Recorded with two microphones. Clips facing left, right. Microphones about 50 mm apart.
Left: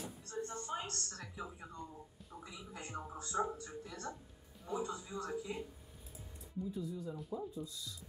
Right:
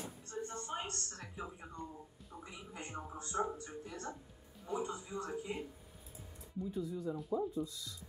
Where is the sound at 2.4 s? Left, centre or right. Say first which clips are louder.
Right 1 dB; right.